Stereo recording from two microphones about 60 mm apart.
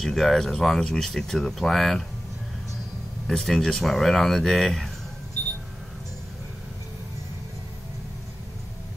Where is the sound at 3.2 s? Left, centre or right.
Centre.